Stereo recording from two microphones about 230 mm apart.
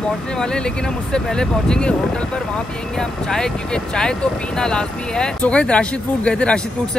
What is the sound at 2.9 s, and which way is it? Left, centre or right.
Speech, centre.